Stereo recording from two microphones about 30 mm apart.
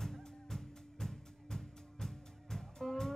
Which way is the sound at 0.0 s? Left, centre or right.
Centre.